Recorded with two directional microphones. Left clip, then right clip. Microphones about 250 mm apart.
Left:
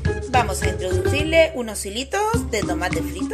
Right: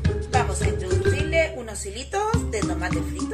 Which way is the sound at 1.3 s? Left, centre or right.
Left.